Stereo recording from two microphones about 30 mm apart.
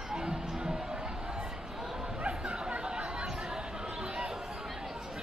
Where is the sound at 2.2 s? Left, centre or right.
Right.